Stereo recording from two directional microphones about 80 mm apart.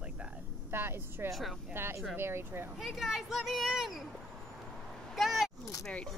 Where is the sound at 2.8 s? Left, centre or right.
Centre.